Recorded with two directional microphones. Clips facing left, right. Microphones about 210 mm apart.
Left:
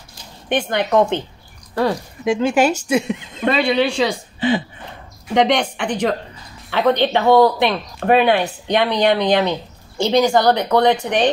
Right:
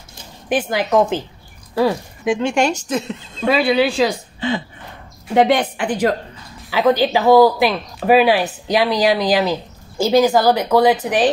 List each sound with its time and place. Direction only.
0.5 s speech: 5° right (ahead or behind); by 3.4 s 15° left (ahead or behind)
3.4 s speech: 5° right (ahead or behind)
4.4 s a sound: 15° left (ahead or behind)
5.3 s speech: 5° right (ahead or behind)